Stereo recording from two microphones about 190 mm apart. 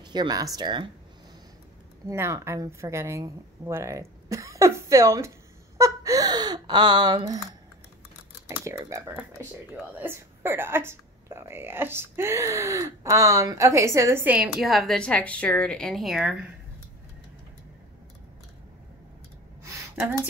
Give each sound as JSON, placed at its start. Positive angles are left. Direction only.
{"t": 0.0, "sound": "speech", "side_deg": -25}
{"t": 2.0, "sound": "speech", "side_deg": -15}
{"t": 8.5, "sound": "speech", "side_deg": -15}